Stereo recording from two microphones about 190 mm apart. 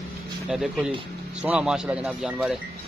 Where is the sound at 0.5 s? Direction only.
5° right (ahead or behind).